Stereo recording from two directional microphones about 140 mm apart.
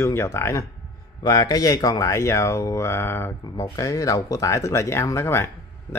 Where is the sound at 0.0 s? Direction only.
20° left (ahead or behind).